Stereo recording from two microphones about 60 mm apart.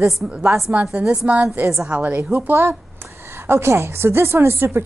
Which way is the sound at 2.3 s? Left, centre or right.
Right.